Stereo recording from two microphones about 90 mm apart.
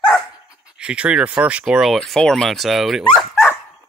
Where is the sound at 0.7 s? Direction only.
10° right (ahead or behind).